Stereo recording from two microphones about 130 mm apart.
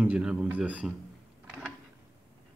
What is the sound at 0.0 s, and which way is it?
Speech, 10° right (ahead or behind).